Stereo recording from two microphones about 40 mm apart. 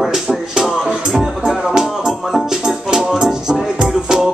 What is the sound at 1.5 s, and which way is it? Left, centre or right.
Music, centre.